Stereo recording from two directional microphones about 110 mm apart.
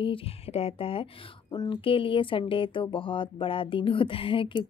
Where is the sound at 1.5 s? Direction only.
45° left (ahead or behind).